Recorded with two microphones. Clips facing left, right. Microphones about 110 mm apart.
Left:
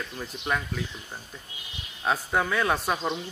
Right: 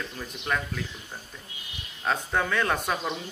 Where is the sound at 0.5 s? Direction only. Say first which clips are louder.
Even; 10° left (ahead or behind).